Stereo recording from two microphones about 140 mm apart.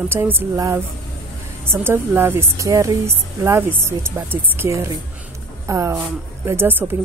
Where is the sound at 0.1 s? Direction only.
15° right (ahead or behind).